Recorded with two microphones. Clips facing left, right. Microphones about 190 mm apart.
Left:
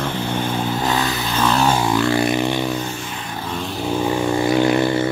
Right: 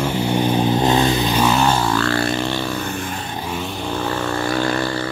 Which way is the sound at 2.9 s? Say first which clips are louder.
Right 4 dB; 50° right (ahead or behind).